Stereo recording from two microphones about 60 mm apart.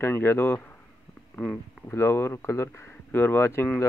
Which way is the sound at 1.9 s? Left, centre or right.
Left.